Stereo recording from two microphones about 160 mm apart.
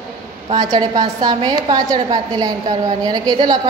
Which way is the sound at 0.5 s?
25° right (ahead or behind).